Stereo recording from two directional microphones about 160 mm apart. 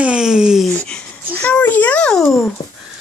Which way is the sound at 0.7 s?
10° left (ahead or behind).